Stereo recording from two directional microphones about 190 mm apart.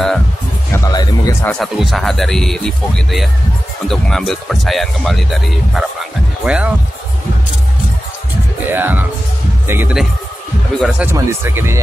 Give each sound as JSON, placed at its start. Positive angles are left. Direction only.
{"t": 0.7, "sound": "music", "side_deg": 15}
{"t": 1.5, "sound": "speech", "side_deg": 0}
{"t": 8.6, "sound": "speech", "side_deg": -10}